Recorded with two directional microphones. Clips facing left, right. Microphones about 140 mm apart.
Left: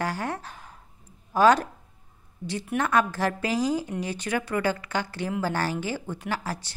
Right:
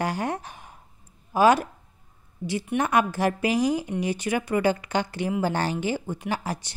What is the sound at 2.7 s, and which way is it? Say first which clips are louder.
A woman's voice: right 1 dB; 15° right (ahead or behind).